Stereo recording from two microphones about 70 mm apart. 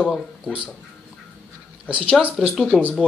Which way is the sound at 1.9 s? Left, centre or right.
Centre.